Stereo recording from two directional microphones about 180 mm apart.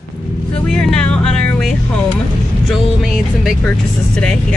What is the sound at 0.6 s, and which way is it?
Vehicle, 5° left (ahead or behind).